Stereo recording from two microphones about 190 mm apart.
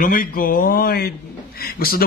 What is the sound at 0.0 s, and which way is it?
Speech, 50° left (ahead or behind).